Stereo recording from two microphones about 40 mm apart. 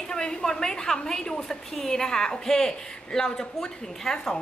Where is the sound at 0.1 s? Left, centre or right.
Centre.